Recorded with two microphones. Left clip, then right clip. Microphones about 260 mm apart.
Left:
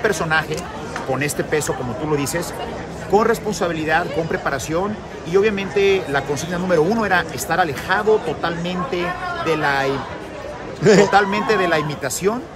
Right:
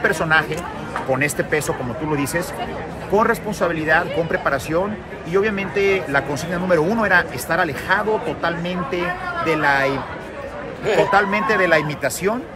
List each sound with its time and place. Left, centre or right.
0.0 s speech: centre
3.1 s speech: centre
10.8 s a man's voice: left
11.1 s speech: centre